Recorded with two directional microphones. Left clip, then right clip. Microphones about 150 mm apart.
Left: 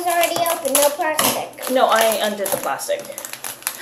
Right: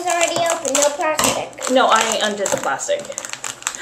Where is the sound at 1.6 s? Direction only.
15° right (ahead or behind).